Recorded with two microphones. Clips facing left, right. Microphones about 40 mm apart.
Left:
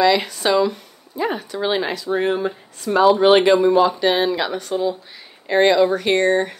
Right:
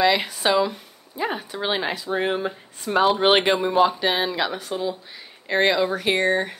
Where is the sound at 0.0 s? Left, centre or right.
Centre.